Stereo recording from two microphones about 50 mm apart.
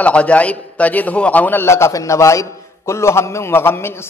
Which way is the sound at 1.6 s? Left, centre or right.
Left.